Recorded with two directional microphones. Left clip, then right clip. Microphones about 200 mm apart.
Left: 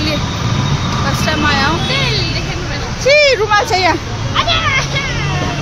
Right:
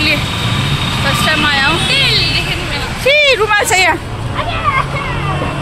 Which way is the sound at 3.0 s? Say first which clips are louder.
Even; 15° left (ahead or behind).